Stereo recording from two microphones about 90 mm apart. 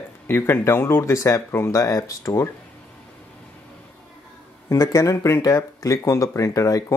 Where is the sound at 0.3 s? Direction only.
25° left (ahead or behind).